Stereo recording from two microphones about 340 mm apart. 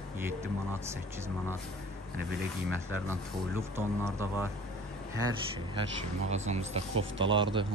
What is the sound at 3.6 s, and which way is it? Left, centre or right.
Speech, centre.